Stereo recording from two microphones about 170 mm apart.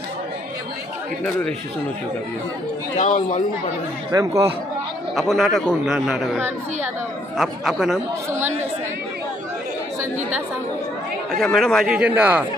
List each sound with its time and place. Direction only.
3.0 s speech: 40° left (ahead or behind)
4.1 s speech: 20° right (ahead or behind)
5.1 s a man's voice: centre (ahead or behind)
11.3 s a man's voice: centre (ahead or behind)